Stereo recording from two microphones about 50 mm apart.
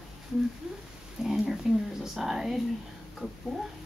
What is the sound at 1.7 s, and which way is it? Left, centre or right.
Speech, centre.